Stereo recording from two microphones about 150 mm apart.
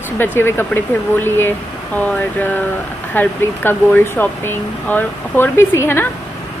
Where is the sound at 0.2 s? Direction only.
15° left (ahead or behind).